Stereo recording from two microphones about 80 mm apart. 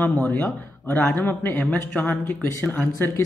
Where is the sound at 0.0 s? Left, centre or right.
Centre.